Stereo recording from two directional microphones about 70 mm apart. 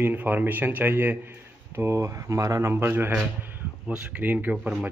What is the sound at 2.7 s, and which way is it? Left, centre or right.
Speech, right.